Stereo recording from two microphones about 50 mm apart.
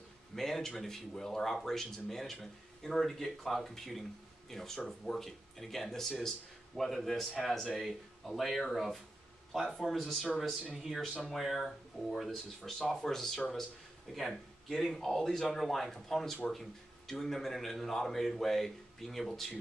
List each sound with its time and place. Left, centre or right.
0.4 s speech: centre